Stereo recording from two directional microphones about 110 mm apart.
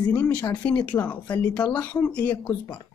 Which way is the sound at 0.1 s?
15° left (ahead or behind).